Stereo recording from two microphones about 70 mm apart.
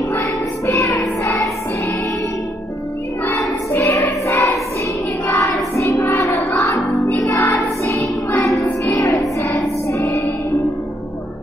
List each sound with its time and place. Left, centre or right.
0.7 s music: left
3.3 s child singing: left
4.3 s choir: left
7.5 s music: left